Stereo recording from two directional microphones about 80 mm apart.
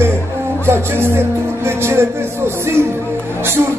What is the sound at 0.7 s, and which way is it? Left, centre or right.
Music, right.